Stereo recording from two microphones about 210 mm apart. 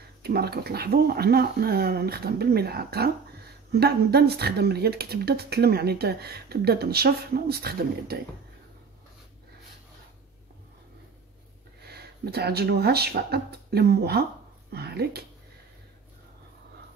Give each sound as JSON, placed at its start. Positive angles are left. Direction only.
{"t": 0.2, "sound": "speech", "side_deg": -50}
{"t": 11.8, "sound": "speech", "side_deg": -50}